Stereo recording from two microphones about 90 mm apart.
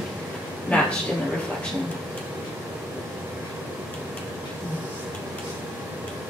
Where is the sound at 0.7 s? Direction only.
15° left (ahead or behind).